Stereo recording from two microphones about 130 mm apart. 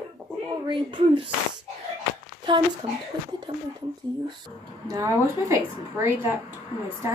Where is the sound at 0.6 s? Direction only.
40° right (ahead or behind).